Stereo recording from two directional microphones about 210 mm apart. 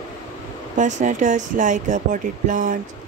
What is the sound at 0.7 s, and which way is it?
Speech, 35° right (ahead or behind).